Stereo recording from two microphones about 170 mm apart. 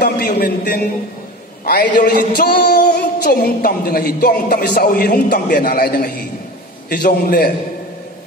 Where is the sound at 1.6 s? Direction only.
60° left (ahead or behind).